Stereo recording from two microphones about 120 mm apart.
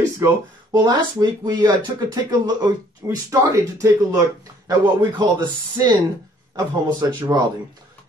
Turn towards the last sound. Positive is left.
turn(degrees=-35)  # may be behind; listen again after turning